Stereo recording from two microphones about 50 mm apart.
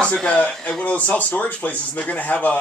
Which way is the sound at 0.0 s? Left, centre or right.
Left.